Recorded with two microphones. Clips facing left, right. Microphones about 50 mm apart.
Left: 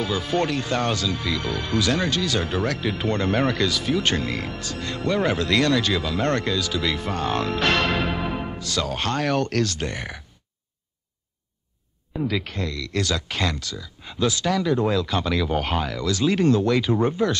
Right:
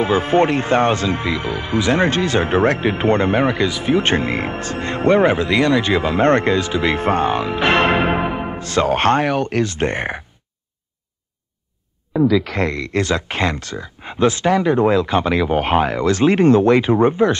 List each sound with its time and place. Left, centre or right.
0.0 s speech: right
7.2 s speech: centre; by 9.2 s right
9.2 s speech: centre
9.8 s speech: right
12.7 s speech: right